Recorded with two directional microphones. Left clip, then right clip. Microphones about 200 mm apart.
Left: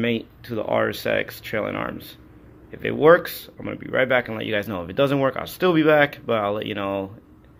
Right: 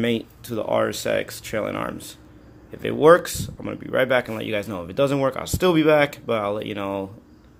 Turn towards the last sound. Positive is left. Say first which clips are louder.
# left 1 dB
turn(degrees=-10)  # may be behind; listen again after turning